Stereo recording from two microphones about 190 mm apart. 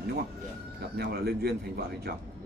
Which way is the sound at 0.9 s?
55° right (ahead or behind).